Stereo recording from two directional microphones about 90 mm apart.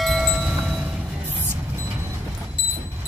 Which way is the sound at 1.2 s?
25° right (ahead or behind).